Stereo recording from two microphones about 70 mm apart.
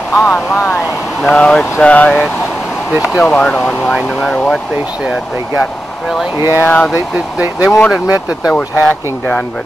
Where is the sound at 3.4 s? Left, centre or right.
Centre.